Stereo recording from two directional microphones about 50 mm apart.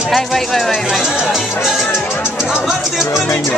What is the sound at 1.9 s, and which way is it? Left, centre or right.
Music, left.